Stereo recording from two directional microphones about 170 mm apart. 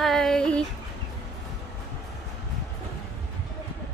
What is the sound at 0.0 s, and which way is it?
Female singing, centre (ahead or behind).